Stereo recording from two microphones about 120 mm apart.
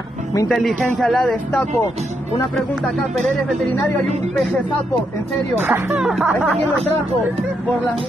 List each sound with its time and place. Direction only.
0.5 s a man's voice: centre (ahead or behind)
5.6 s speech: 20° right (ahead or behind)
5.9 s a man's voice: 5° right (ahead or behind)